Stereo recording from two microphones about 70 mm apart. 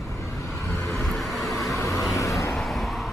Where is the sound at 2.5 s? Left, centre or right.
Centre.